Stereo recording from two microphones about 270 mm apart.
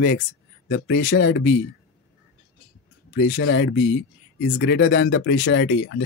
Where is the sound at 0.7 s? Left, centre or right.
Left.